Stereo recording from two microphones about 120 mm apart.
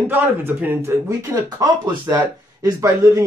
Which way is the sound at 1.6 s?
35° right (ahead or behind).